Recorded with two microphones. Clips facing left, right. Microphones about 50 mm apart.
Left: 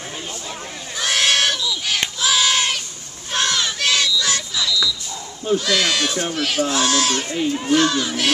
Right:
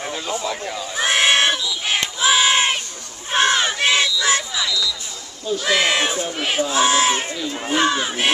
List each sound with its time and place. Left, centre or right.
0.9 s crowd: right
2.0 s child singing: right
3.3 s a sound: right
5.6 s speech: right